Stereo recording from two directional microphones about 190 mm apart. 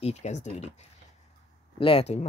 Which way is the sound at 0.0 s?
35° left (ahead or behind).